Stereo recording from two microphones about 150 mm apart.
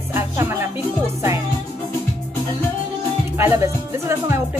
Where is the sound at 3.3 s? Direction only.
15° right (ahead or behind).